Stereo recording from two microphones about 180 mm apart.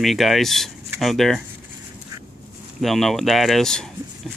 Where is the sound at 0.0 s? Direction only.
Centre (ahead or behind).